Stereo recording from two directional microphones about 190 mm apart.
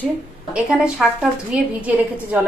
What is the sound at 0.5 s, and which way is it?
A woman's voice, 5° right (ahead or behind).